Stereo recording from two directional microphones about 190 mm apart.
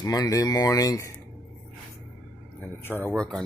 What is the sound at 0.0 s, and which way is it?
Speech, 15° left (ahead or behind).